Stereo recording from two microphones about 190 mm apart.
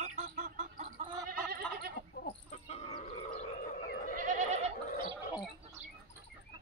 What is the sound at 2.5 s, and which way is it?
Livestock, 40° left (ahead or behind).